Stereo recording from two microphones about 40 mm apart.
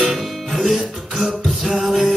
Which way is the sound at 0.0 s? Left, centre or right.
Centre.